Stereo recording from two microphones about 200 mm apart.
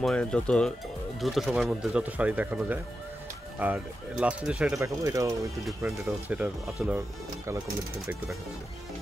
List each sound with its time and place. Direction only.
0.0 s speech: 5° left (ahead or behind)